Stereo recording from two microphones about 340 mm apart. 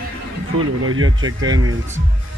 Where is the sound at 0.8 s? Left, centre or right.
Right.